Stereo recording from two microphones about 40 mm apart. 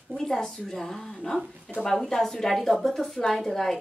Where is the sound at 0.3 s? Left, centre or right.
Centre.